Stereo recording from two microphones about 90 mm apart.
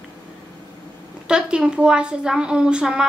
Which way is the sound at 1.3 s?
10° right (ahead or behind).